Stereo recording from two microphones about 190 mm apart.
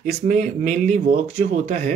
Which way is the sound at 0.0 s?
40° right (ahead or behind).